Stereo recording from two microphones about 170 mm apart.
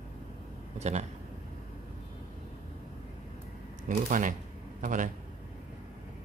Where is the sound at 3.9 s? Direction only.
50° right (ahead or behind).